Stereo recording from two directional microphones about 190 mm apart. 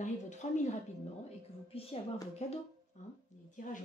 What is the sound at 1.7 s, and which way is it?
A woman's voice, 30° left (ahead or behind).